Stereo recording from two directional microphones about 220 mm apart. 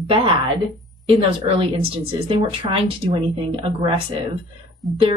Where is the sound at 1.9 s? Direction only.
25° right (ahead or behind).